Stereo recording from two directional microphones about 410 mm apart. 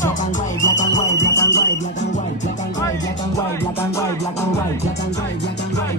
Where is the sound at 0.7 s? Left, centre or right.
Left.